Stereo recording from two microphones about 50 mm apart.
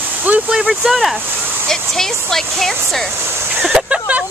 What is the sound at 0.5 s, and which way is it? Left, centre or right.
Speech, centre.